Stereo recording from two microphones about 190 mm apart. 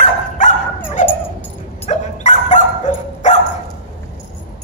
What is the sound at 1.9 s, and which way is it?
Dog, 40° left (ahead or behind).